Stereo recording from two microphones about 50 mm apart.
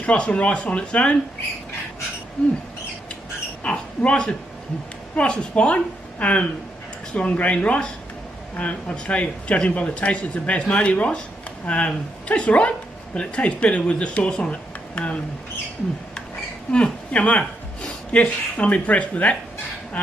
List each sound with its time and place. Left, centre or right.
0.0 s speech: left
3.6 s speech: left
16.7 s speech: left